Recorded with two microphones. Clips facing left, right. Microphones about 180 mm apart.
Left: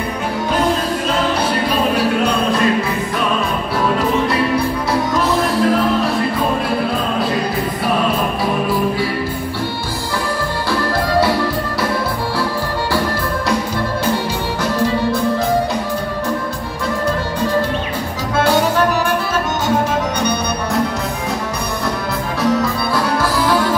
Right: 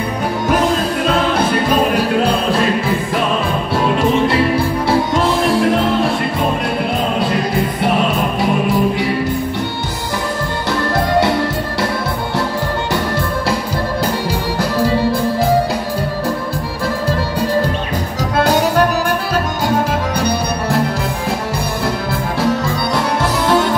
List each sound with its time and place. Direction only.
5.1 s music: 25° right (ahead or behind)
14.6 s music: 35° right (ahead or behind)
20.2 s music: 30° right (ahead or behind)
22.4 s music: 25° right (ahead or behind)